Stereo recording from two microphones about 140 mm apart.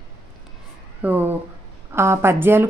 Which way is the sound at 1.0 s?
10° right (ahead or behind).